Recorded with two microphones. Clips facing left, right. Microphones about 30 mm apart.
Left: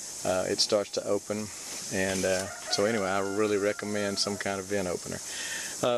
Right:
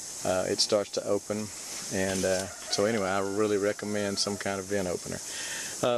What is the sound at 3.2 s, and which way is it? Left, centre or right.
Speech, centre.